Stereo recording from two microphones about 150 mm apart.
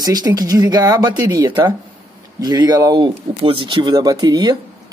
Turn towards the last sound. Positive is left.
turn(degrees=-30)  # may be behind; listen again after turning